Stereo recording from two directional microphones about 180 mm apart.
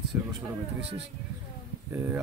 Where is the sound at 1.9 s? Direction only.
10° right (ahead or behind).